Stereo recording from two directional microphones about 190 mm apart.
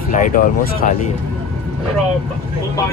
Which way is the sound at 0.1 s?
45° left (ahead or behind).